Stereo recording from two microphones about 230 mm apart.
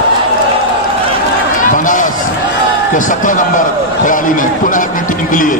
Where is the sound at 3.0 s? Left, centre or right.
Left.